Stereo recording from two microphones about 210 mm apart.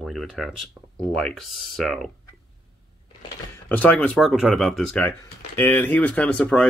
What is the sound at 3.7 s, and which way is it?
Speech, 5° left (ahead or behind).